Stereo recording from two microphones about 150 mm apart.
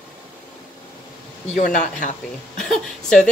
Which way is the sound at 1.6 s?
55° left (ahead or behind).